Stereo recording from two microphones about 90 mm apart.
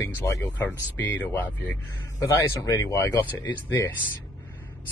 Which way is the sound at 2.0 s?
30° left (ahead or behind).